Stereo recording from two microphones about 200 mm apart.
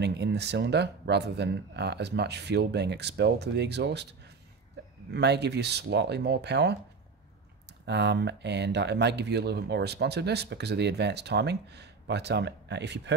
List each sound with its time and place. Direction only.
0.0 s speech: 55° right (ahead or behind)
5.1 s speech: 55° right (ahead or behind)
7.8 s speech: 60° right (ahead or behind)